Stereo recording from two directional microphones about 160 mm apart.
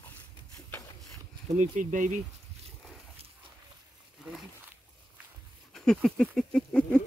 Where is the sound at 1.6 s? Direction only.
50° right (ahead or behind).